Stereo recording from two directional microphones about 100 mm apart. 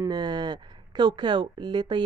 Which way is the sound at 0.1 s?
45° right (ahead or behind).